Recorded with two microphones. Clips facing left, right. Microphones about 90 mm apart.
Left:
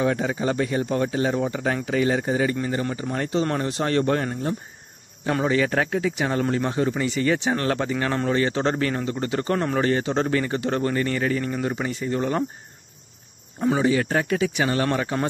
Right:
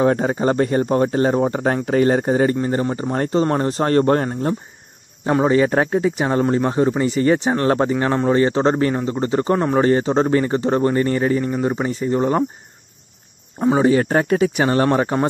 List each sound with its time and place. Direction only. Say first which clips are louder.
0.0 s speech: right 6 dB; 40° right (ahead or behind); by 9.8 s 20° right (ahead or behind)
9.8 s speech: right 6 dB; 35° right (ahead or behind)
13.7 s speech: right 7 dB; 40° right (ahead or behind)